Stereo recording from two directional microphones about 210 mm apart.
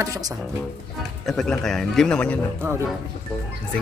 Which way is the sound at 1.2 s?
5° left (ahead or behind).